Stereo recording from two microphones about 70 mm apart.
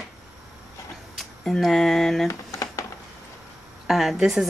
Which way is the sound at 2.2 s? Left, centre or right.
Left.